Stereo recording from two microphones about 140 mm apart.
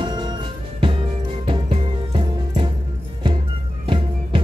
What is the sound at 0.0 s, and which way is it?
Music, 30° right (ahead or behind).